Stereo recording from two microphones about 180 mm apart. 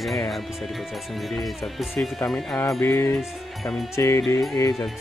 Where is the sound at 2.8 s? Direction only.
15° left (ahead or behind).